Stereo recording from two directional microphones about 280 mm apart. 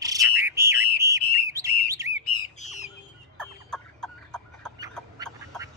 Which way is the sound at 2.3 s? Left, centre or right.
Left.